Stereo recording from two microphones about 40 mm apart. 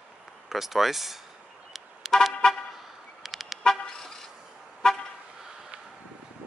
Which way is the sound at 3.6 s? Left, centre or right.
Centre.